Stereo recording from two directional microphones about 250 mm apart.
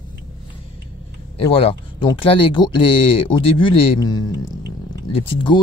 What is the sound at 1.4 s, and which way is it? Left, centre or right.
Speech, left.